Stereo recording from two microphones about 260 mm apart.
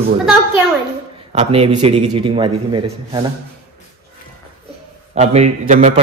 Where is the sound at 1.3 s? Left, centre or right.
Right.